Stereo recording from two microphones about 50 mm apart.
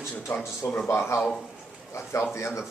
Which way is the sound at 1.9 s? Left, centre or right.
Left.